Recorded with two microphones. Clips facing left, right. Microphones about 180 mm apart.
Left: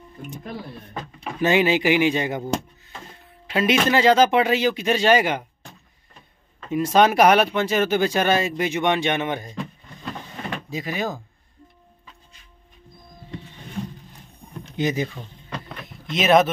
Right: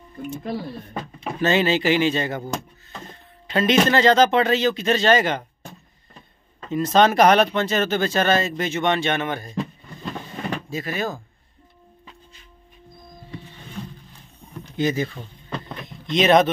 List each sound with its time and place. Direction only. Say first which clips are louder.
1.4 s speech: left 1 dB; 15° left (ahead or behind)
3.1 s a sound: right 1 dB; 10° left (ahead or behind)
3.9 s speech: left 2 dB; 10° left (ahead or behind)
6.7 s speech: even; 10° left (ahead or behind)
10.7 s speech: left 2 dB; 15° left (ahead or behind)
14.6 s a sound: right 1 dB; 15° left (ahead or behind)
15.1 s rowboat: right 2 dB; 5° left (ahead or behind)